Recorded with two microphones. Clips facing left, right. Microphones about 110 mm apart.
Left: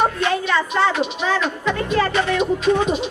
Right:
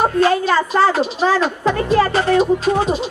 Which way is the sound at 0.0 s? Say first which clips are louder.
Right 5 dB; 35° right (ahead or behind).